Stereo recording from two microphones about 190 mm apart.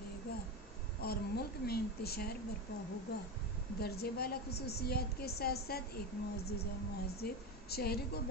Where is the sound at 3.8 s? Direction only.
55° left (ahead or behind).